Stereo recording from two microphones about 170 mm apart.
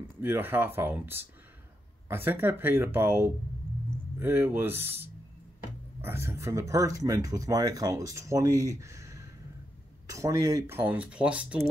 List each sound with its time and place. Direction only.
0.2 s speech: 10° right (ahead or behind)